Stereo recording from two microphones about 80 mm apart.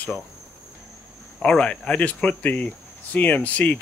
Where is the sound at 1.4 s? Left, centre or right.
Centre.